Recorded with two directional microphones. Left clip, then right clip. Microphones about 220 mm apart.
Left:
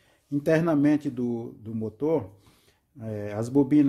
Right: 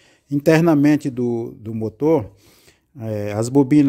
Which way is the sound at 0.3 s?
40° right (ahead or behind).